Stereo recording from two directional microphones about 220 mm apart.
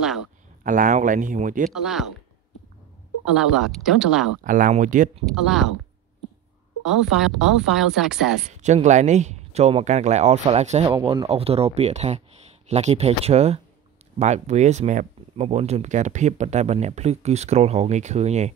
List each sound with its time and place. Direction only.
0.7 s speech: 35° right (ahead or behind)
1.7 s a woman's voice: centre (ahead or behind)
3.3 s a woman's voice: 5° right (ahead or behind)
4.4 s speech: 35° right (ahead or behind)
5.2 s a woman's voice: centre (ahead or behind)
6.8 s a woman's voice: 5° right (ahead or behind)
8.5 s speech: 30° right (ahead or behind)